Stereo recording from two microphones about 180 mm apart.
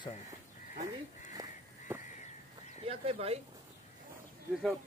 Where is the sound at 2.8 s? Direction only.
35° right (ahead or behind).